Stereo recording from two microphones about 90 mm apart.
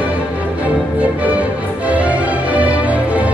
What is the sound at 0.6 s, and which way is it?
Music, 15° right (ahead or behind).